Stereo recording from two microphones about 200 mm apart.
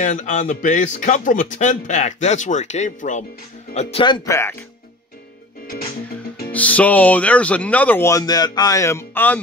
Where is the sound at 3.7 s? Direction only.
25° left (ahead or behind).